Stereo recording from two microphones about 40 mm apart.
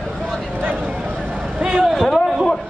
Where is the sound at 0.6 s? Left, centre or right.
Right.